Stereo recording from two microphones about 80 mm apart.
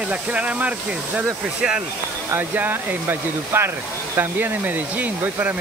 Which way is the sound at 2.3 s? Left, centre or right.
Right.